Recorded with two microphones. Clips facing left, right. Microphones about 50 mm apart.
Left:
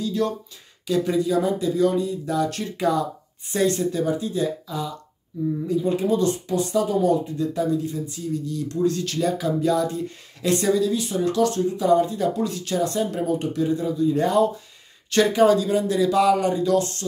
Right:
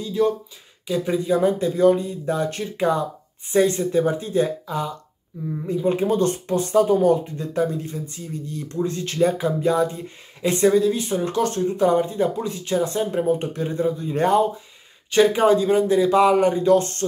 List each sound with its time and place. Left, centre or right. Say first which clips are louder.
0.0 s speech: right 3 dB; centre
4.0 s speech: right 4 dB; right
15.0 s speech: right 2 dB; centre
15.4 s speech: right 1 dB; right